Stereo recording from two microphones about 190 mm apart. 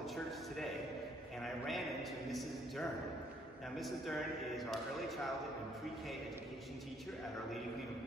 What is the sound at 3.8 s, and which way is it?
A man's voice, centre (ahead or behind).